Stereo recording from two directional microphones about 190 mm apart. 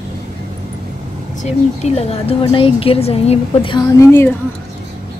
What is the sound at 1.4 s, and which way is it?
A woman's voice, 35° left (ahead or behind).